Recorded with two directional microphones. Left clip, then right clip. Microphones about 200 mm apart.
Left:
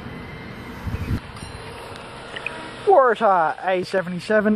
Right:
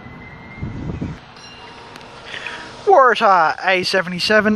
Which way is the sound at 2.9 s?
15° right (ahead or behind).